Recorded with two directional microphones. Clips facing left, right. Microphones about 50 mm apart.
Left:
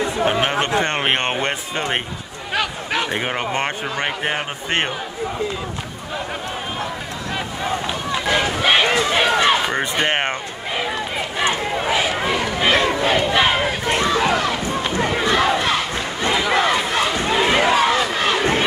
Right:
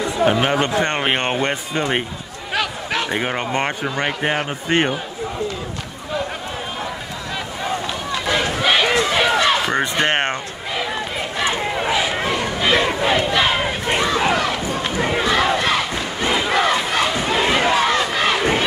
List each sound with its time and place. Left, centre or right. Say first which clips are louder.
0.3 s speech: right 2 dB; centre
7.6 s run: even; centre
10.9 s a sound: even; centre
12.7 s crowd: right 1 dB; centre
13.3 s battle cry: left 1 dB; centre
13.6 s run: even; centre
15.6 s crowd: right 1 dB; centre